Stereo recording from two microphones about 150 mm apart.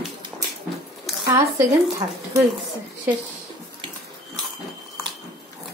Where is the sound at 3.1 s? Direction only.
15° right (ahead or behind).